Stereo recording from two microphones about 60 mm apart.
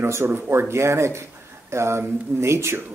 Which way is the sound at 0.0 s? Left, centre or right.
Right.